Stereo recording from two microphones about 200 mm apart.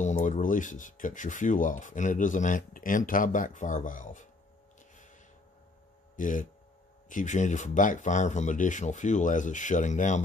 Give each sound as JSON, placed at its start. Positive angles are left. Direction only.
{"t": 0.0, "sound": "speech", "side_deg": 40}
{"t": 6.1, "sound": "speech", "side_deg": 40}